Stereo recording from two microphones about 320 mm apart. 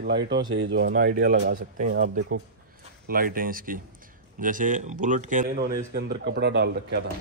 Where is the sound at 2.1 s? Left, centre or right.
Right.